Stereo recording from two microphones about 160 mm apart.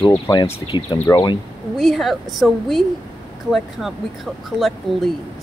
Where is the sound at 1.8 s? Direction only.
Centre (ahead or behind).